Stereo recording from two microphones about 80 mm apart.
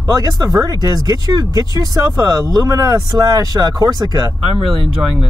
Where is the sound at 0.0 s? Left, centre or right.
Right.